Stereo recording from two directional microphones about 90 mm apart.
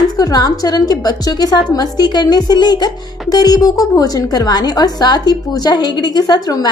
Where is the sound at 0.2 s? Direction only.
45° left (ahead or behind).